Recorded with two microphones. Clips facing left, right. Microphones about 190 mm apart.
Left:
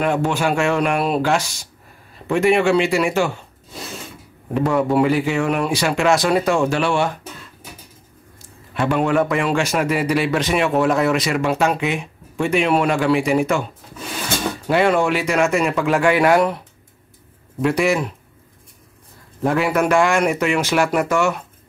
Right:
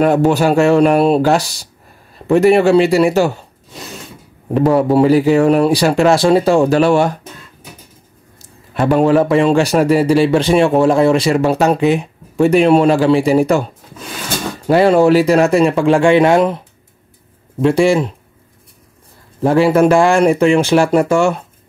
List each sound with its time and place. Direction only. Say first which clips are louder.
0.0 s a man's voice: right 7 dB; 40° right (ahead or behind)
4.6 s a man's voice: right 6 dB; 35° right (ahead or behind)
8.7 s a man's voice: right 6 dB; 40° right (ahead or behind)
14.7 s a man's voice: right 7 dB; 35° right (ahead or behind)
19.4 s a man's voice: right 7 dB; 30° right (ahead or behind)